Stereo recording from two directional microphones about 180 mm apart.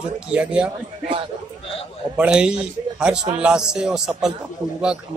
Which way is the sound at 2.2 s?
5° right (ahead or behind).